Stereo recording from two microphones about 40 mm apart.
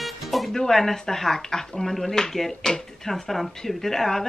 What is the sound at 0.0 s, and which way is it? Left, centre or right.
Music, centre.